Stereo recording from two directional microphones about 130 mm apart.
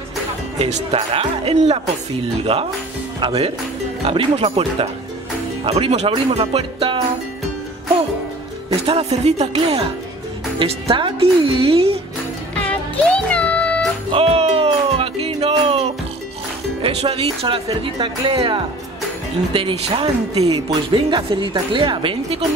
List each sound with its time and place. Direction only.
0.6 s speech: 55° right (ahead or behind)
8.8 s speech: 55° right (ahead or behind)
10.6 s speech: 45° right (ahead or behind)
12.5 s music: 10° left (ahead or behind)
14.1 s music: 50° right (ahead or behind)
16.8 s speech: 50° right (ahead or behind)
20.9 s speech: 40° right (ahead or behind)